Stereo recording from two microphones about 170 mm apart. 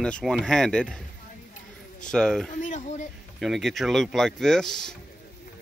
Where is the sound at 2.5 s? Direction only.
50° left (ahead or behind).